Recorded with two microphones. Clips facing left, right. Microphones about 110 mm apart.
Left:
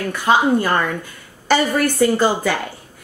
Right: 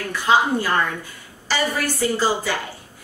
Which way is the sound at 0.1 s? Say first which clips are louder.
Left 2 dB; 55° left (ahead or behind).